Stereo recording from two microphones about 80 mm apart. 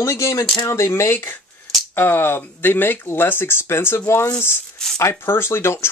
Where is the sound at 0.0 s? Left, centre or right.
Left.